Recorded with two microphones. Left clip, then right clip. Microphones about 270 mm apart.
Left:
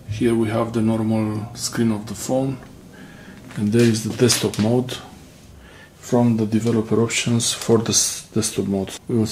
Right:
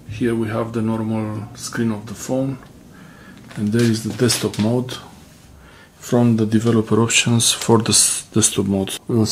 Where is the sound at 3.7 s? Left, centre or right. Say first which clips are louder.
Left 1 dB; centre.